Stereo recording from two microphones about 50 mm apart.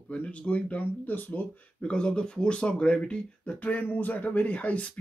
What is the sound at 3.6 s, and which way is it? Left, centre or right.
Speech, left.